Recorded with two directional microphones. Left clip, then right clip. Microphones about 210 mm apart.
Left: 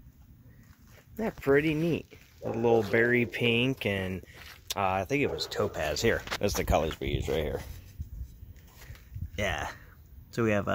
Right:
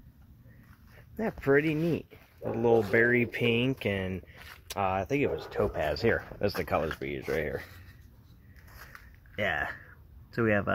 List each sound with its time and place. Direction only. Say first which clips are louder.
1.1 s speech: even; 15° left (ahead or behind); by 6.0 s centre (ahead or behind)
6.0 s speech: left 2 dB; 10° left (ahead or behind)
9.3 s speech: right 2 dB; 10° left (ahead or behind)